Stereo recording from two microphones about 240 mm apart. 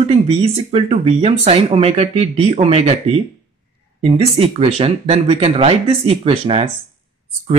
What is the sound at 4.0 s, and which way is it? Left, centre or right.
Speech, right.